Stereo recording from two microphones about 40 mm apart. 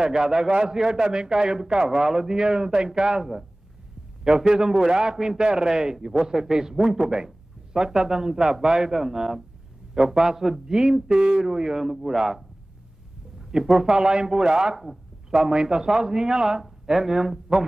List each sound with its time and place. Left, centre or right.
0.0 s a man's voice: centre
11.1 s a man's voice: right
11.4 s a man's voice: centre
13.4 s a sound: centre
13.7 s a man's voice: centre
14.8 s a man's voice: centre